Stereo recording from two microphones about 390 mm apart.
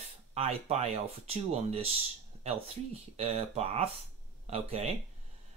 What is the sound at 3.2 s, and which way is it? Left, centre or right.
Speech, centre.